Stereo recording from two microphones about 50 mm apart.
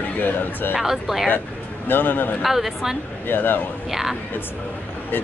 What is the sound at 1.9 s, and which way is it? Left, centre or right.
Speech, left.